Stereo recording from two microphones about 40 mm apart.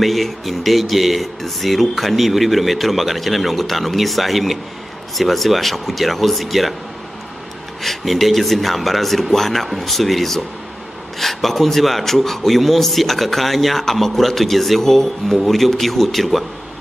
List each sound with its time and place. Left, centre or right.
0.0 s speech: centre
7.8 s speech: centre